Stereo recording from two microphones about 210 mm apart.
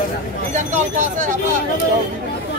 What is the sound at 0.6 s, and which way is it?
Speech, 35° right (ahead or behind).